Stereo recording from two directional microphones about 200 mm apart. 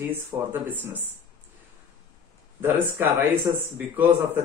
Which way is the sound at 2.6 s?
10° right (ahead or behind).